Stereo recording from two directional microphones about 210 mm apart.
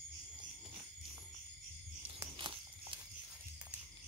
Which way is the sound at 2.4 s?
25° right (ahead or behind).